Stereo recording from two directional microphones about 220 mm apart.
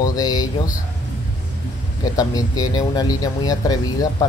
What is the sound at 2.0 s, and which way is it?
Speech, 15° left (ahead or behind).